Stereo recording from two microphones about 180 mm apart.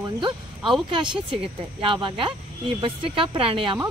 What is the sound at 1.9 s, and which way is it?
Speech, 30° right (ahead or behind).